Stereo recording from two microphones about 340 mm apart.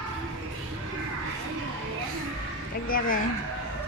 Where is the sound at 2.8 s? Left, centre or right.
Left.